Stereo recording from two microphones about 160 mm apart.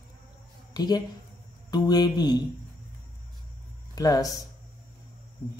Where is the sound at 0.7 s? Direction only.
25° left (ahead or behind).